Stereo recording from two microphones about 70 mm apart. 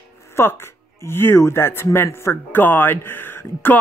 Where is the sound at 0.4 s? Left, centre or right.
Left.